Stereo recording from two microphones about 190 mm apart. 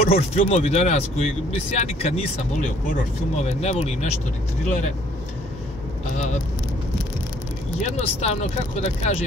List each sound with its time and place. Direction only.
0.1 s speech: 35° left (ahead or behind)
7.8 s speech: 35° left (ahead or behind)